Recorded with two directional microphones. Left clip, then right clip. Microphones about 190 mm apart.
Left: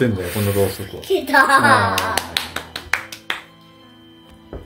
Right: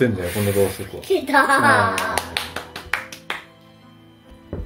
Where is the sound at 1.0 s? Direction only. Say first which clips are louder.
Left 2 dB; 5° left (ahead or behind).